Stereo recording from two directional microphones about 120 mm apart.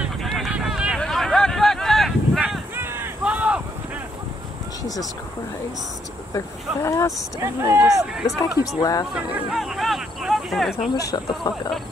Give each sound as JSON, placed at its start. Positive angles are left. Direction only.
{"t": 0.2, "sound": "vehicle", "side_deg": 0}
{"t": 0.9, "sound": "a sound", "side_deg": 5}
{"t": 2.7, "sound": "a sound", "side_deg": -20}
{"t": 6.3, "sound": "speech", "side_deg": 25}
{"t": 7.4, "sound": "speech", "side_deg": -20}
{"t": 8.4, "sound": "speech", "side_deg": 30}
{"t": 9.1, "sound": "speech", "side_deg": -5}
{"t": 10.9, "sound": "speech", "side_deg": 30}